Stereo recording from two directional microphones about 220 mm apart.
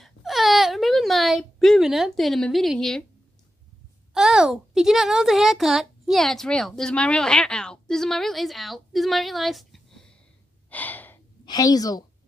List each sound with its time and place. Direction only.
0.0 s wail: centre (ahead or behind)
4.1 s speech: centre (ahead or behind)
10.7 s gasp: 5° left (ahead or behind)
11.4 s a woman's voice: 15° left (ahead or behind)